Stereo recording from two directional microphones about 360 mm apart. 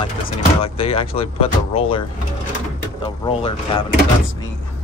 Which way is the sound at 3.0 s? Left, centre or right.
Centre.